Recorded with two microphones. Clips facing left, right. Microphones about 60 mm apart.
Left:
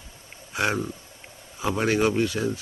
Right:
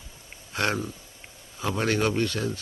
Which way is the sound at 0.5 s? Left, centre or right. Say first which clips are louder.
Left 2 dB; centre.